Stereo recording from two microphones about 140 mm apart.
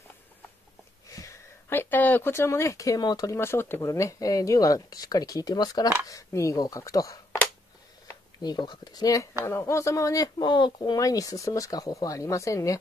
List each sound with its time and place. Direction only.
1.0 s speech: 25° left (ahead or behind)
8.4 s speech: 30° left (ahead or behind)